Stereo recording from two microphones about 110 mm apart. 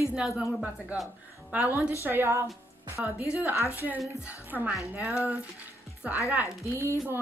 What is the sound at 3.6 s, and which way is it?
Speech, 25° left (ahead or behind).